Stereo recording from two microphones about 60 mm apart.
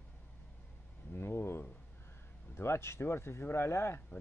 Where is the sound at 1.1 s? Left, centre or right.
Left.